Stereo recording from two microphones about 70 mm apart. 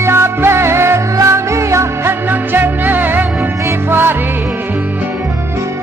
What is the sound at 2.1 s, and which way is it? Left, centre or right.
Music, right.